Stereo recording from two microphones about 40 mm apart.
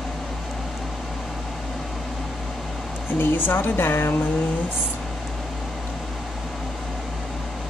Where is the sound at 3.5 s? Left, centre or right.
Left.